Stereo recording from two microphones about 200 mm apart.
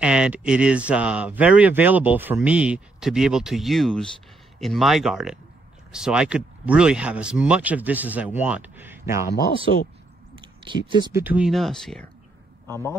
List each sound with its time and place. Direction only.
0.0 s speech: 5° right (ahead or behind)
10.4 s speech: 25° right (ahead or behind)
11.2 s speech: 5° right (ahead or behind)